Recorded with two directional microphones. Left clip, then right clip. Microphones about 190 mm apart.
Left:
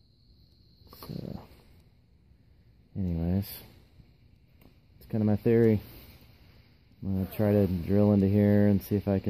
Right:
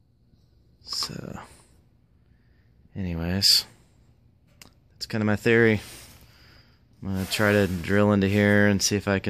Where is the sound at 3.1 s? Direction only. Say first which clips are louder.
Right 12 dB; centre (ahead or behind).